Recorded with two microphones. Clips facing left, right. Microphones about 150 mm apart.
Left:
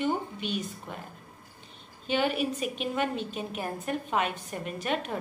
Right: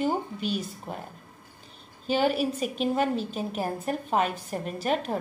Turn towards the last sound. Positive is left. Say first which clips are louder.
# right 4 dB
turn(degrees=-35)  # may be behind; listen again after turning